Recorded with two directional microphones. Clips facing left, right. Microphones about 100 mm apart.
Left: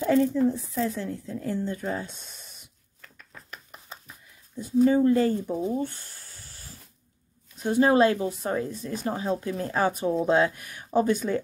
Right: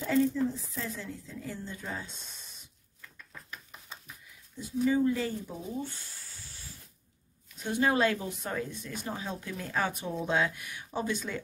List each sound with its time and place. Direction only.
0.0 s speech: 55° left (ahead or behind)
3.0 s a sound: 65° left (ahead or behind)
4.6 s speech: 45° left (ahead or behind)
7.6 s speech: 35° left (ahead or behind)